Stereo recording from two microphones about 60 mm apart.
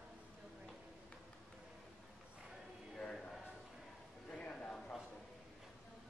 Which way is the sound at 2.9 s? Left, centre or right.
Centre.